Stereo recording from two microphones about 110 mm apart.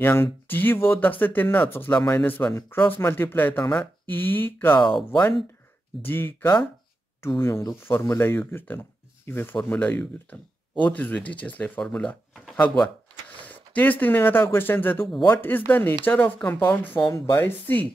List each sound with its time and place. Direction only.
0.0 s speech: 20° left (ahead or behind)
4.8 s speech: 50° left (ahead or behind)
6.0 s speech: 20° left (ahead or behind)